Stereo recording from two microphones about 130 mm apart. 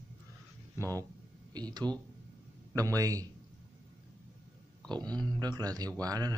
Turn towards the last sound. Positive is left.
turn(degrees=-30)  # may be behind; listen again after turning